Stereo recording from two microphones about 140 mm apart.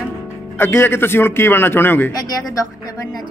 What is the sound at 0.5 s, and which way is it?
A man's voice, 15° left (ahead or behind).